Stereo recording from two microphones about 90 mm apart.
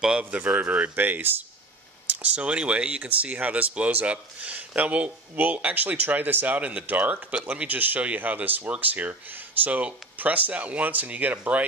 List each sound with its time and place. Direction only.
0.2 s speech: 15° right (ahead or behind)